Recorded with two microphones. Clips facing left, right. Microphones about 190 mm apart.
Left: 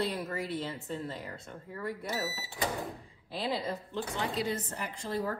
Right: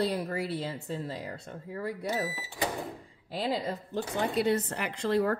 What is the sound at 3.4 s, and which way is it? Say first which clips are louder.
Speech: right 2 dB; 40° right (ahead or behind).